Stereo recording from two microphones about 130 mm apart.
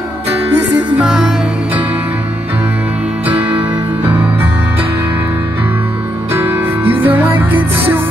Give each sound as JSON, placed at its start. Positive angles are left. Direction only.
{"t": 0.7, "sound": "music", "side_deg": -10}
{"t": 3.3, "sound": "music", "side_deg": -10}
{"t": 6.3, "sound": "music", "side_deg": -15}